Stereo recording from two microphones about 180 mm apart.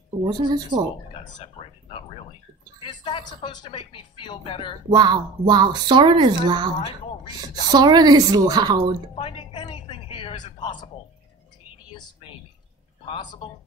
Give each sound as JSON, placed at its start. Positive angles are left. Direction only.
{"t": 0.2, "sound": "speech", "side_deg": -25}
{"t": 1.1, "sound": "a sound", "side_deg": 30}
{"t": 3.4, "sound": "speech", "side_deg": 30}
{"t": 4.8, "sound": "speech", "side_deg": -25}
{"t": 7.7, "sound": "speech", "side_deg": -20}
{"t": 9.1, "sound": "a sound", "side_deg": 30}
{"t": 11.9, "sound": "speech", "side_deg": 30}